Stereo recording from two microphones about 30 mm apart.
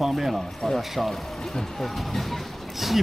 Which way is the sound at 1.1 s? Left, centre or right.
Centre.